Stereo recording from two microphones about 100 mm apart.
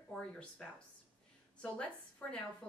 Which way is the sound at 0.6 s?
5° left (ahead or behind).